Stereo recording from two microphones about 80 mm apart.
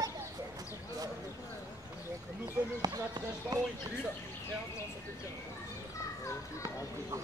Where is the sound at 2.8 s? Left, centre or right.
Right.